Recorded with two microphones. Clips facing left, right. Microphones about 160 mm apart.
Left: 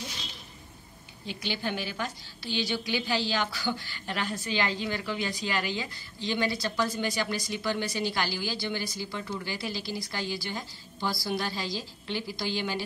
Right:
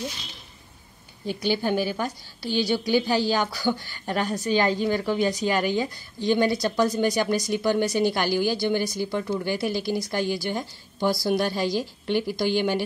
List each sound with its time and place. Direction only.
1.2 s a woman's voice: 45° right (ahead or behind)